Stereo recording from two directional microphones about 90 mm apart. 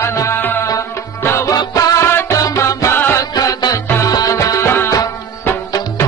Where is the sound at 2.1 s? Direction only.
30° left (ahead or behind).